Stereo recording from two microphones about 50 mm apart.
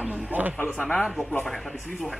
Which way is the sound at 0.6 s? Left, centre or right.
Left.